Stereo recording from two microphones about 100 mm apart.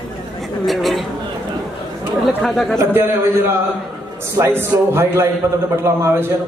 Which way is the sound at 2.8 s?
20° right (ahead or behind).